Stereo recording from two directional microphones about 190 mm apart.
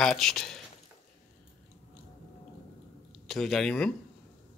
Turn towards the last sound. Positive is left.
turn(degrees=5)  # may be behind; listen again after turning